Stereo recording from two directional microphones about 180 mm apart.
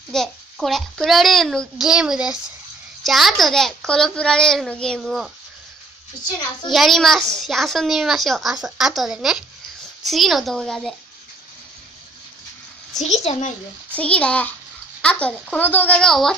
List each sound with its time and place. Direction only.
0.1 s a child's voice: centre (ahead or behind)
6.7 s a child's voice: centre (ahead or behind)
13.0 s a child's voice: 40° left (ahead or behind)
13.9 s speech: 5° left (ahead or behind)